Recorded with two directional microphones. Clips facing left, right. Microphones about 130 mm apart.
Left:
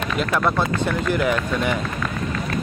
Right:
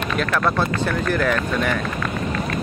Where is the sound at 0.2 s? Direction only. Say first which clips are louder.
Even; 15° left (ahead or behind).